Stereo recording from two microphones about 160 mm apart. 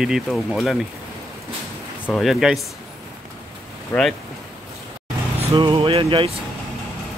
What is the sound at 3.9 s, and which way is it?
Speech, 10° left (ahead or behind).